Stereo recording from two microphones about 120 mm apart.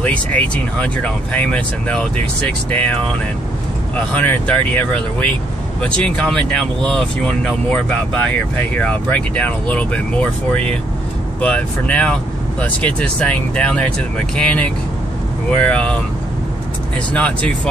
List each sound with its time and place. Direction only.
0.0 s speech: 10° left (ahead or behind)
17.1 s speech: 10° left (ahead or behind)